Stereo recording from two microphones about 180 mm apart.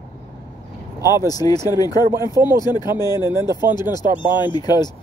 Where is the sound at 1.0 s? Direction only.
15° right (ahead or behind).